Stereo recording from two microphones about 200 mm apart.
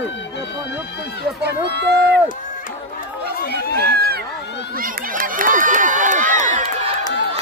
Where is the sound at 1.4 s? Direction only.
60° right (ahead or behind).